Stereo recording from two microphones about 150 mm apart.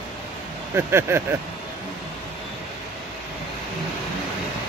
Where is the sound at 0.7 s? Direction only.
15° right (ahead or behind).